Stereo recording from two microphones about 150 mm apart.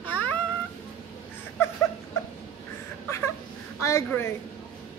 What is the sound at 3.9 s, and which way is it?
Speech, 15° left (ahead or behind).